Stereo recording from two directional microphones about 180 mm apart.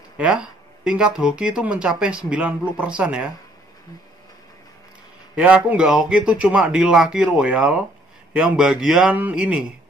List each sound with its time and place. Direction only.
0.2 s speech: 5° right (ahead or behind)
5.3 s speech: 5° right (ahead or behind)